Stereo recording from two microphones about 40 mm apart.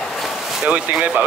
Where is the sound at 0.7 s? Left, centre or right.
Right.